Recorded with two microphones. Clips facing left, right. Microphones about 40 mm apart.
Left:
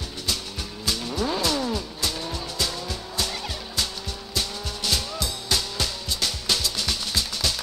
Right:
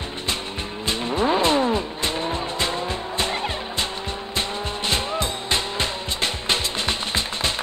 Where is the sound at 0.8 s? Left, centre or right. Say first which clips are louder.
Right 5 dB; right.